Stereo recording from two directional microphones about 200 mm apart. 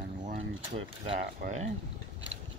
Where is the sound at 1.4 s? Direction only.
50° right (ahead or behind).